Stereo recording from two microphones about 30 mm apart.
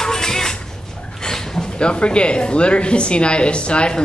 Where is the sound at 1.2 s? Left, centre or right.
Centre.